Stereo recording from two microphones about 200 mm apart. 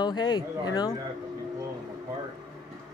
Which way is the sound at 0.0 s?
20° left (ahead or behind).